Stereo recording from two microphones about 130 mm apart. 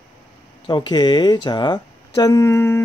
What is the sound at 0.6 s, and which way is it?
Speech, 40° left (ahead or behind).